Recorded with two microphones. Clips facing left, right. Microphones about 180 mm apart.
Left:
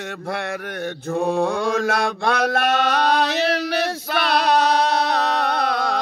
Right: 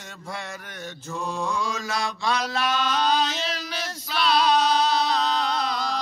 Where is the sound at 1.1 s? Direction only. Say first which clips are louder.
Left 9 dB; 60° left (ahead or behind).